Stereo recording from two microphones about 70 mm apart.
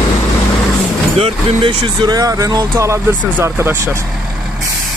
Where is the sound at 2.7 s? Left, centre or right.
Right.